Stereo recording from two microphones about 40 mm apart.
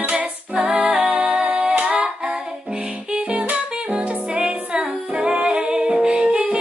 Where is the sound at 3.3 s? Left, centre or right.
Right.